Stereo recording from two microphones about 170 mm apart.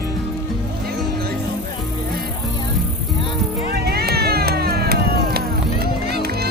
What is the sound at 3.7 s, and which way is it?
Music, 65° right (ahead or behind).